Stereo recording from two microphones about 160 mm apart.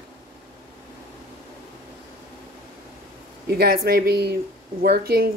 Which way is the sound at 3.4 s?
75° right (ahead or behind).